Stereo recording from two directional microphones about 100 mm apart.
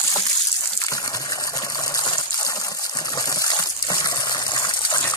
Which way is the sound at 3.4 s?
40° left (ahead or behind).